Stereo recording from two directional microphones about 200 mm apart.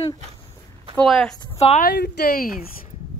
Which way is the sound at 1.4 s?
30° left (ahead or behind).